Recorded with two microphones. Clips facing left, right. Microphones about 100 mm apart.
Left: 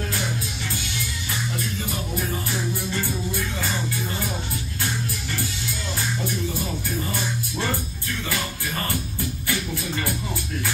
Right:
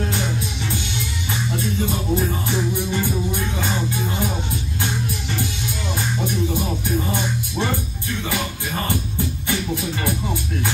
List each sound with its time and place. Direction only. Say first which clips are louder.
2.7 s music: right 5 dB; 20° right (ahead or behind)
7.1 s music: right 4 dB; 20° right (ahead or behind)
9.5 s music: right 4 dB; 20° right (ahead or behind)